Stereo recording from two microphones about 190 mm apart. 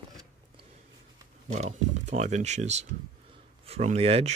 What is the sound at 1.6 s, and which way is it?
Speech, 35° right (ahead or behind).